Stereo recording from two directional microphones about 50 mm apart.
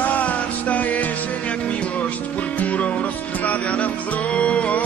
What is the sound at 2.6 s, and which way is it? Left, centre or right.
Music, left.